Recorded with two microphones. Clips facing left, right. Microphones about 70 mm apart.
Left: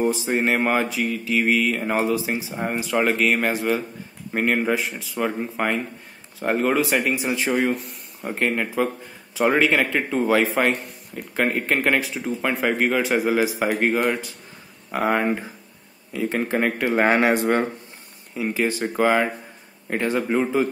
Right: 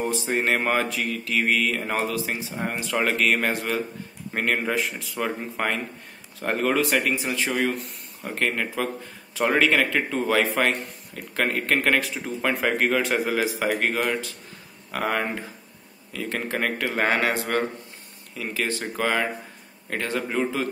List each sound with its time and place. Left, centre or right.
0.0 s a man's voice: centre
7.2 s a man's voice: centre